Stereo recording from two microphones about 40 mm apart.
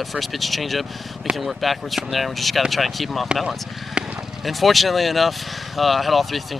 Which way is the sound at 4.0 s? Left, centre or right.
Right.